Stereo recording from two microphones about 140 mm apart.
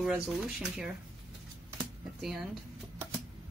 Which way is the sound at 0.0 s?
5° right (ahead or behind).